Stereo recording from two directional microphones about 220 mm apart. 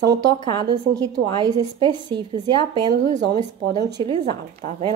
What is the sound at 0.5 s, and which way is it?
A woman's voice, 20° right (ahead or behind).